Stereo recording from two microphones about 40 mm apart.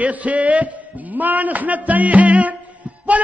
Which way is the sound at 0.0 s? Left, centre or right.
Right.